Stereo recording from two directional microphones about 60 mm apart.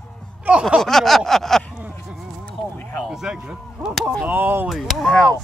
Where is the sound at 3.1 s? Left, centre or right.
Centre.